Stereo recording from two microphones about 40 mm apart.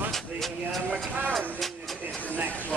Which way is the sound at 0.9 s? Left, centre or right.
Right.